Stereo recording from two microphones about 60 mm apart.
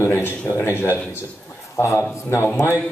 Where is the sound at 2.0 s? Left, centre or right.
Left.